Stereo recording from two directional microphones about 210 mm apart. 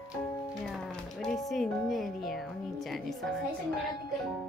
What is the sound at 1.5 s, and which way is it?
Speech, centre (ahead or behind).